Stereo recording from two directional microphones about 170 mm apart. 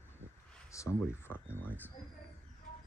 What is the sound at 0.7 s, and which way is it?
Speech, 15° left (ahead or behind).